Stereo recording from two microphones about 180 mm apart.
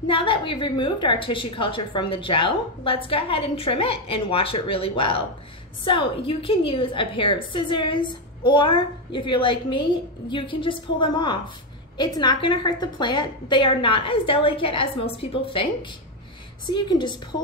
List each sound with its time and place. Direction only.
0.1 s a woman's voice: 30° left (ahead or behind)
16.7 s a woman's voice: 25° left (ahead or behind)